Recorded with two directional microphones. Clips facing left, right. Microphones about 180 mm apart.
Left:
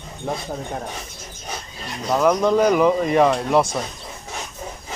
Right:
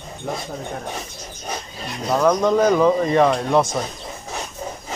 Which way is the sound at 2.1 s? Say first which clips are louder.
Even; 5° left (ahead or behind).